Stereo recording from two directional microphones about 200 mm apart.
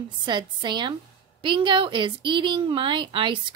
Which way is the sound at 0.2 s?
25° right (ahead or behind).